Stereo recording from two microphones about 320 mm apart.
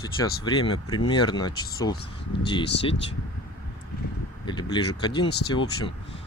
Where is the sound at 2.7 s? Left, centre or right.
Left.